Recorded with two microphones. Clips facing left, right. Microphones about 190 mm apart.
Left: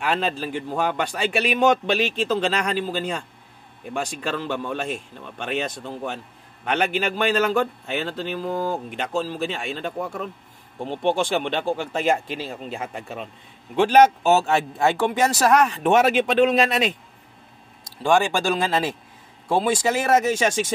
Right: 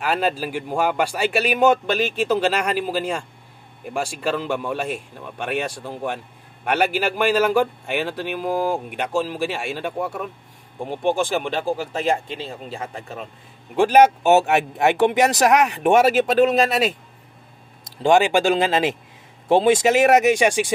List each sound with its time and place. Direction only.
0.0 s a man's voice: 5° right (ahead or behind)
1.9 s speech: 45° right (ahead or behind)
2.1 s a man's voice: 10° right (ahead or behind)
13.7 s a man's voice: 10° right (ahead or behind)
18.0 s a man's voice: 20° right (ahead or behind)